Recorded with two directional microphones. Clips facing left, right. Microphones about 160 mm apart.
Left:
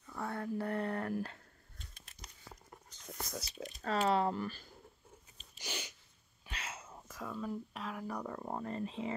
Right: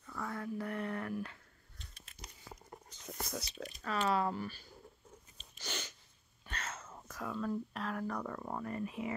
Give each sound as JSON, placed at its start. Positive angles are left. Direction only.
{"t": 0.1, "sound": "a sound", "side_deg": 30}
{"t": 3.2, "sound": "speech", "side_deg": 0}
{"t": 3.8, "sound": "speech", "side_deg": 35}
{"t": 4.4, "sound": "speech", "side_deg": 45}
{"t": 5.6, "sound": "sneeze", "side_deg": 15}
{"t": 6.4, "sound": "whispering", "side_deg": 10}
{"t": 7.2, "sound": "speech", "side_deg": 0}
{"t": 8.3, "sound": "speech", "side_deg": 30}